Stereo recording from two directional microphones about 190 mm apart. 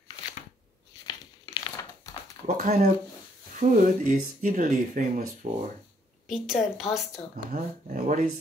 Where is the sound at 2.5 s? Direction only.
50° right (ahead or behind).